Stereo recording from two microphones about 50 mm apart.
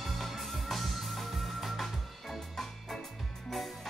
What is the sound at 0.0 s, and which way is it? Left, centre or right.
Music, centre.